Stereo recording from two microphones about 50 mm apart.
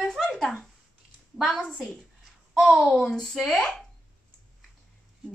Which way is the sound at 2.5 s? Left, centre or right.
Centre.